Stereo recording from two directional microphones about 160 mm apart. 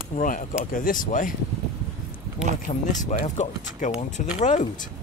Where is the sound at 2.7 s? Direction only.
50° left (ahead or behind).